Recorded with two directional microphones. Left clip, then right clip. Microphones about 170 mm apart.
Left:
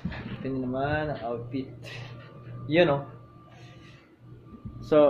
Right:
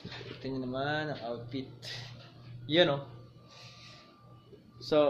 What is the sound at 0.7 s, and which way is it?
Speech, 20° right (ahead or behind).